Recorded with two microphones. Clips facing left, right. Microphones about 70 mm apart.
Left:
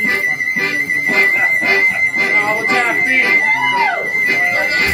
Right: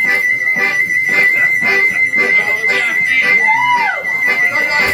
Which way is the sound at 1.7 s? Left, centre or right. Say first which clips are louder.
Right 1 dB; centre.